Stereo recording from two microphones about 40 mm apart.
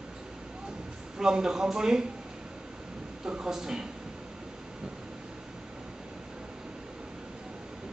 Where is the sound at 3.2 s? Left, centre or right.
Centre.